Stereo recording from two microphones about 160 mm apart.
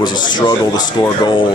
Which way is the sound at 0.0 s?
30° left (ahead or behind).